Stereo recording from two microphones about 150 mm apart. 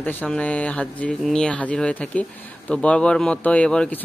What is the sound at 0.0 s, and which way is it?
Speech, 10° left (ahead or behind).